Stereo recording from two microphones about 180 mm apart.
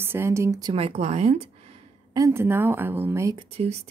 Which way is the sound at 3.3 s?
35° right (ahead or behind).